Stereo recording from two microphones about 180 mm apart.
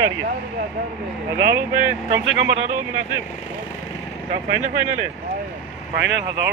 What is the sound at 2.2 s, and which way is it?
Speech, 90° right.